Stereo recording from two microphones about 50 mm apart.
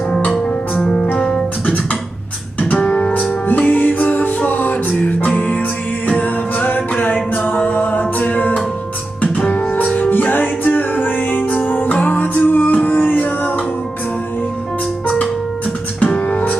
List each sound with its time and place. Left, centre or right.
2.8 s music: centre
3.5 s music: left
7.6 s a capella: left
9.4 s music: left
16.0 s music: left